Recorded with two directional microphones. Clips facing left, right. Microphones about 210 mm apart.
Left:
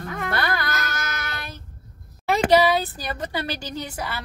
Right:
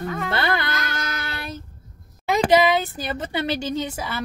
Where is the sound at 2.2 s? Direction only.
20° right (ahead or behind).